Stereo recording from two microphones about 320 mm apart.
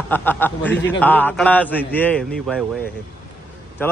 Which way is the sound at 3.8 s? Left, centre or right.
Centre.